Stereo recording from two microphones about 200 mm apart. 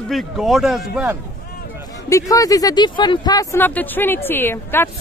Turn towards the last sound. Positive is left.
turn(degrees=10)  # may be behind; listen again after turning